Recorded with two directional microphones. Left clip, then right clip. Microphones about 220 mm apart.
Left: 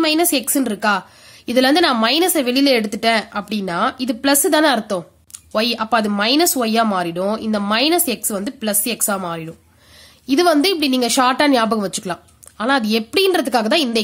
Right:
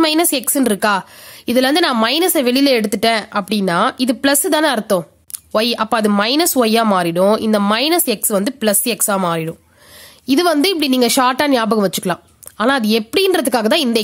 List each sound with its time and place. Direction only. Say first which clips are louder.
0.0 s a woman's voice: right 2 dB; 40° right (ahead or behind)